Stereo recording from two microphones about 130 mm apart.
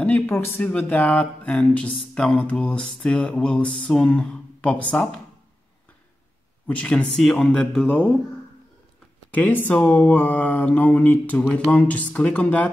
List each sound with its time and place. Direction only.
0.0 s speech: 15° left (ahead or behind)
6.7 s speech: 10° left (ahead or behind)
9.3 s speech: 15° left (ahead or behind)